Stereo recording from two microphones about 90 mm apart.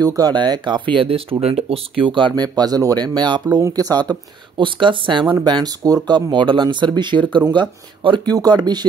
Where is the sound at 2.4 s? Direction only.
45° right (ahead or behind).